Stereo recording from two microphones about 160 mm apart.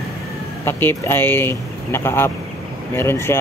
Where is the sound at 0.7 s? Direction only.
15° left (ahead or behind).